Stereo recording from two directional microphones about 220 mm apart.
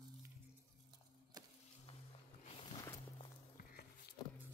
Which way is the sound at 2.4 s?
20° left (ahead or behind).